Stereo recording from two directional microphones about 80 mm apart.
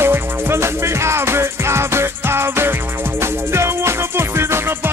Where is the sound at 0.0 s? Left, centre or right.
Right.